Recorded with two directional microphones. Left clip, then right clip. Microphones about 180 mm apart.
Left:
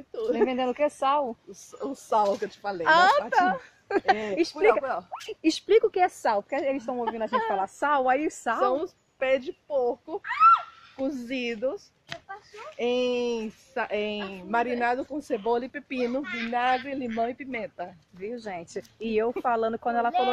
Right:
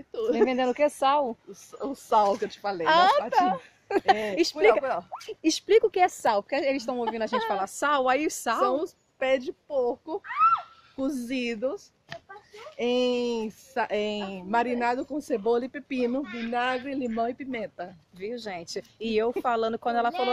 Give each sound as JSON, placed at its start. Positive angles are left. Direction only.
{"t": 0.1, "sound": "a sound", "side_deg": -50}
{"t": 0.5, "sound": "a woman's voice", "side_deg": -10}
{"t": 1.5, "sound": "speech", "side_deg": -45}
{"t": 2.8, "sound": "a woman's voice", "side_deg": 5}
{"t": 5.1, "sound": "speech", "side_deg": 5}
{"t": 7.2, "sound": "a woman's voice", "side_deg": -55}
{"t": 7.5, "sound": "speech", "side_deg": -5}
{"t": 8.6, "sound": "speech", "side_deg": -45}
{"t": 12.1, "sound": "a sound", "side_deg": 35}
{"t": 12.7, "sound": "speech", "side_deg": -50}
{"t": 16.3, "sound": "a woman's voice", "side_deg": -5}
{"t": 16.8, "sound": "speech", "side_deg": -50}
{"t": 18.2, "sound": "speech", "side_deg": 0}